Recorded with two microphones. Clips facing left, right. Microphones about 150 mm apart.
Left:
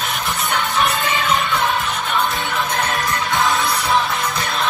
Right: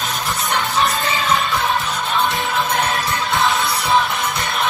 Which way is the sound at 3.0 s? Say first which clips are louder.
Even; 20° left (ahead or behind).